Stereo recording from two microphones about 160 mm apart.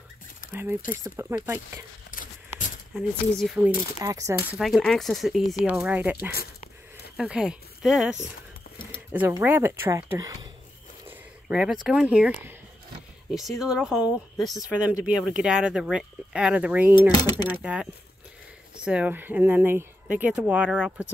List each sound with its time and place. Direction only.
0.5 s speech: 15° right (ahead or behind)
3.0 s speech: centre (ahead or behind)
4.0 s speech: 20° right (ahead or behind)
4.6 s speech: centre (ahead or behind)
7.2 s speech: 5° right (ahead or behind); by 10.5 s 25° right (ahead or behind)
11.1 s speech: 5° right (ahead or behind)
17.1 s speech: 25° left (ahead or behind)
17.5 s speech: 5° right (ahead or behind)